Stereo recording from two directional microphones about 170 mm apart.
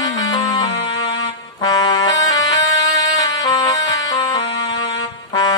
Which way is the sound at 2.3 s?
90° left.